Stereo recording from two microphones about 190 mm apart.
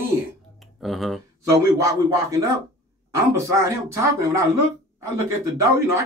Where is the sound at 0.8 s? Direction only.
Centre (ahead or behind).